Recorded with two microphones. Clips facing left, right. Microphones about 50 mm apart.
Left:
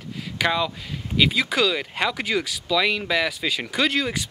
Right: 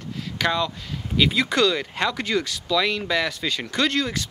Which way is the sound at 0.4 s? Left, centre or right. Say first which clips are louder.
Left 1 dB; centre.